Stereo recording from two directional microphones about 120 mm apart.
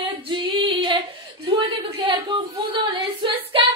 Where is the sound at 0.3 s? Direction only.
45° right (ahead or behind).